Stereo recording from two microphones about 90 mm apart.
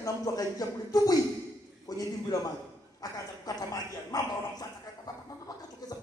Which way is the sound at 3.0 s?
40° left (ahead or behind).